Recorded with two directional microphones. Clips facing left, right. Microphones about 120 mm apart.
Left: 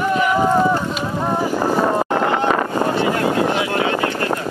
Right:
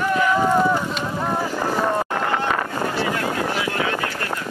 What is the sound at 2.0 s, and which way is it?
Wind noise, 25° left (ahead or behind).